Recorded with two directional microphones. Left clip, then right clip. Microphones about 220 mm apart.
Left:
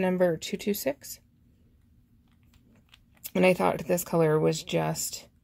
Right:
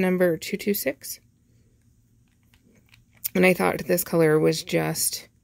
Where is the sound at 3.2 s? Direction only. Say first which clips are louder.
Right 3 dB; 25° right (ahead or behind).